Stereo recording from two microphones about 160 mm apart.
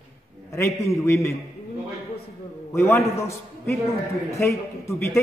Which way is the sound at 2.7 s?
15° left (ahead or behind).